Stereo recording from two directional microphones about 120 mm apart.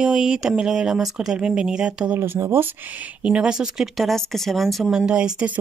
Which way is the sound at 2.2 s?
20° right (ahead or behind).